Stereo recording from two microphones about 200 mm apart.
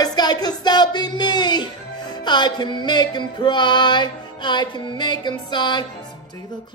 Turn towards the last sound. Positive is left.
turn(degrees=20)  # may be behind; listen again after turning